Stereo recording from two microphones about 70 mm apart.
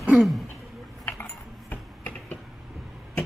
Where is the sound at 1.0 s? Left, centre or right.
Left.